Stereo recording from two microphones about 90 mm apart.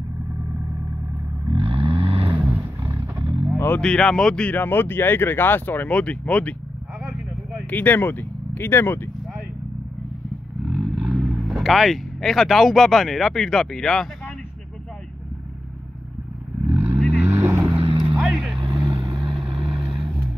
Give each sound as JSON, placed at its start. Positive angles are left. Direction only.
{"t": 1.5, "sound": "vehicle", "side_deg": -85}
{"t": 2.3, "sound": "vehicle", "side_deg": -25}
{"t": 3.5, "sound": "vehicle", "side_deg": 25}
{"t": 3.8, "sound": "speech", "side_deg": 10}
{"t": 7.0, "sound": "vehicle", "side_deg": -5}
{"t": 7.7, "sound": "speech", "side_deg": 20}
{"t": 10.7, "sound": "speech", "side_deg": -10}
{"t": 16.7, "sound": "vehicle", "side_deg": -25}
{"t": 17.2, "sound": "boat", "side_deg": -25}
{"t": 17.7, "sound": "vehicle", "side_deg": -80}
{"t": 18.1, "sound": "vehicle", "side_deg": -15}
{"t": 18.9, "sound": "vehicle", "side_deg": -55}
{"t": 19.1, "sound": "vehicle", "side_deg": -10}